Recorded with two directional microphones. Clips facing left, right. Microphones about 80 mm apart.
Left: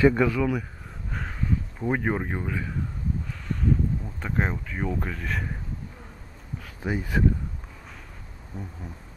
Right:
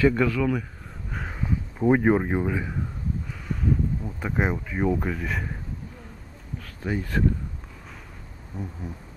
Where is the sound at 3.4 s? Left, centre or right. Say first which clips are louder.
Even; centre.